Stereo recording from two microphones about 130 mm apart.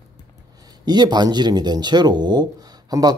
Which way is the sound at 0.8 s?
35° right (ahead or behind).